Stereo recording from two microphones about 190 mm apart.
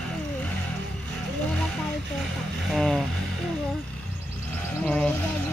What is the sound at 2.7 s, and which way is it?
Speech, 5° left (ahead or behind).